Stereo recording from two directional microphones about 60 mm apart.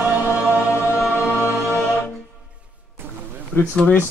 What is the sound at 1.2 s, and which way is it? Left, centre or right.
Music, left.